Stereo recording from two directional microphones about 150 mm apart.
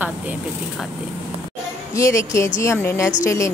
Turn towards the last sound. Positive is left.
turn(degrees=20)  # may be behind; listen again after turning